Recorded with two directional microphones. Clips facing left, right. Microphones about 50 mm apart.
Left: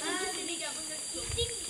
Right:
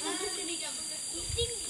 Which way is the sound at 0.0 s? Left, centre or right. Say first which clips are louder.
Left 2 dB; left.